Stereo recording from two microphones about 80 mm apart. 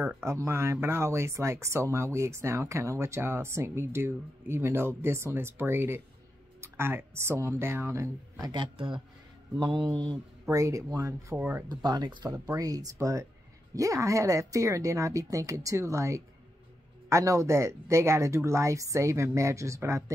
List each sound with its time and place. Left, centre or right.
0.0 s speech: right
8.5 s speech: right
9.6 s speech: right
10.5 s speech: right
11.3 s speech: right
11.7 s speech: right
12.4 s speech: right